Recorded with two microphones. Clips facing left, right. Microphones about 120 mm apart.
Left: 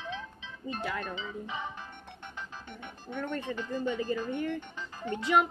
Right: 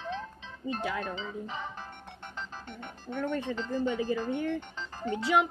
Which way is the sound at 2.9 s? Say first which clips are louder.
Right 3 dB; 10° right (ahead or behind).